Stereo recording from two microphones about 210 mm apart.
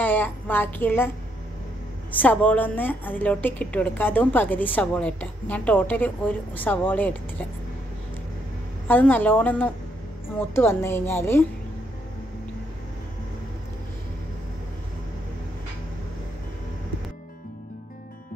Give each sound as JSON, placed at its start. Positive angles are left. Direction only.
{"t": 0.0, "sound": "a woman's voice", "side_deg": 10}
{"t": 2.1, "sound": "a woman's voice", "side_deg": 5}
{"t": 8.8, "sound": "a woman's voice", "side_deg": 10}